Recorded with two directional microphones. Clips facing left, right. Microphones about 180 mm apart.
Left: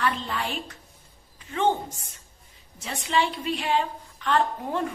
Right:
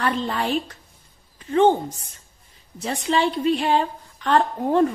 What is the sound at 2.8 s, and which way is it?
A woman's voice, 40° right (ahead or behind).